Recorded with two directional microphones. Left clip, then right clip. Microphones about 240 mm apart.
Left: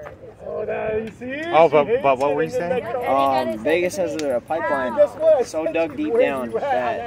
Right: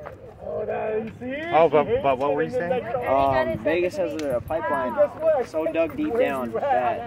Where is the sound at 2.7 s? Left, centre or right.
Left.